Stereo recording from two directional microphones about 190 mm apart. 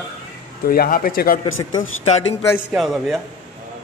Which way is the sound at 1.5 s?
90° left.